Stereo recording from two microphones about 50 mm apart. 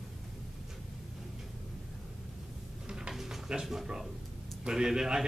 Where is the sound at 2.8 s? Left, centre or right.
Centre.